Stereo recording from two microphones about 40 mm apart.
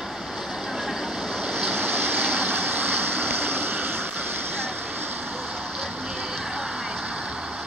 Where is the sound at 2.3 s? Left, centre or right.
Right.